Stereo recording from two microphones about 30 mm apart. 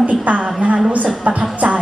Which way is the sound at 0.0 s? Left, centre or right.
Right.